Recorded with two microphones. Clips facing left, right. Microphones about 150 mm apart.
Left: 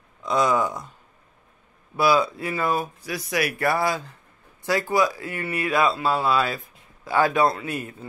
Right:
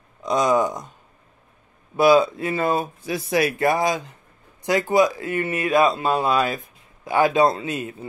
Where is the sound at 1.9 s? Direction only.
20° right (ahead or behind).